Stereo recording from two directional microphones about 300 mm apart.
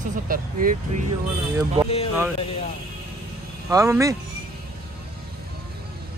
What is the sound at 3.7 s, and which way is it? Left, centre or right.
Speech, centre.